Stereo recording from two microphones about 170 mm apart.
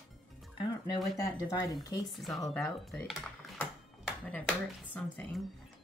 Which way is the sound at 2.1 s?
Centre (ahead or behind).